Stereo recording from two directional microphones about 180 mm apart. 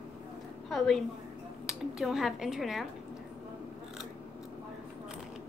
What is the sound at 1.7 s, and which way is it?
Speech, centre (ahead or behind).